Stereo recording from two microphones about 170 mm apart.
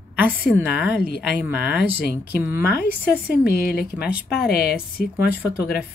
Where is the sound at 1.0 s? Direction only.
70° left (ahead or behind).